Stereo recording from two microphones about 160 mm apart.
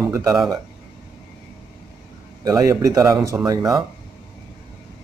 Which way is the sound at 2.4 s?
20° right (ahead or behind).